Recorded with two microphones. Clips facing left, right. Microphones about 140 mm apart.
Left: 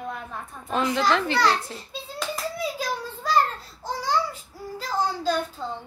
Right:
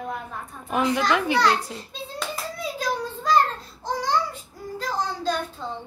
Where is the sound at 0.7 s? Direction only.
15° right (ahead or behind).